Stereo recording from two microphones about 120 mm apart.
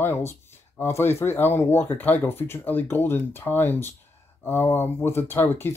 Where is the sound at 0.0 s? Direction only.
20° left (ahead or behind).